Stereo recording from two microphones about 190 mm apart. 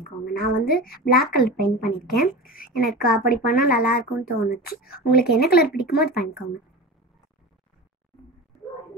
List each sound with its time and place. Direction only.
0.0 s a woman's voice: 50° left (ahead or behind)